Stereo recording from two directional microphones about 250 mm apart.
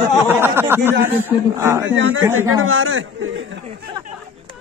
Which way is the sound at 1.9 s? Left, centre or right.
Right.